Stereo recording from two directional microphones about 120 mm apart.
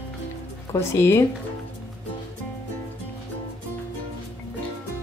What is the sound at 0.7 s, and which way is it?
Speech, 20° left (ahead or behind).